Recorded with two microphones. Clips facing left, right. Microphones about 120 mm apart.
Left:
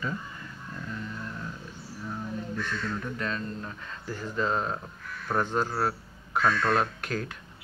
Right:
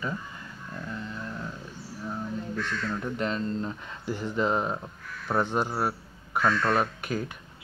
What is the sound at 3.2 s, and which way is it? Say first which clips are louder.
A man's voice: right 4 dB; 25° right (ahead or behind).